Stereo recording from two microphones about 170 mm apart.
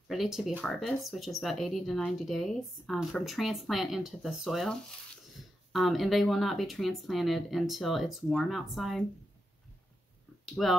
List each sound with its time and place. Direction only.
0.1 s speech: centre (ahead or behind)
10.4 s speech: centre (ahead or behind)